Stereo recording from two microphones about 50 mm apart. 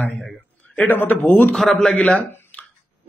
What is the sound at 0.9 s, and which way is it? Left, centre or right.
Speech, left.